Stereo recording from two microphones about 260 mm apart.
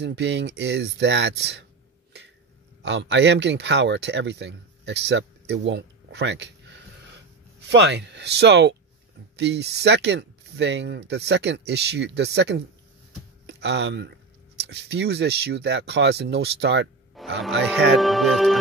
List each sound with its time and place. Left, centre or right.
0.0 s speech: right
2.8 s speech: right
7.6 s speech: right
17.2 s music: centre
17.6 s speech: centre